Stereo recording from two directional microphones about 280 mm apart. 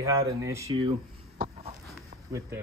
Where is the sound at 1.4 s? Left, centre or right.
Right.